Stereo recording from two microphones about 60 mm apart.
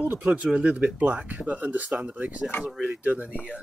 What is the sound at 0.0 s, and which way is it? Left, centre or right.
Speech, right.